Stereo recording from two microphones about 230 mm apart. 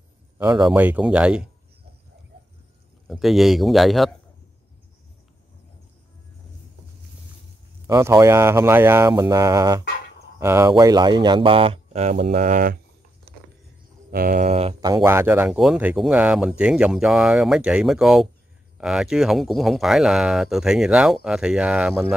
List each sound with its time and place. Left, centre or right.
0.4 s speech: centre
3.1 s speech: centre
7.8 s speech: centre; by 12.7 s right
14.1 s speech: right; by 15.0 s centre
15.0 s speech: centre